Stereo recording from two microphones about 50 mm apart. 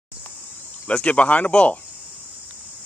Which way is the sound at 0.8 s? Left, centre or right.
Left.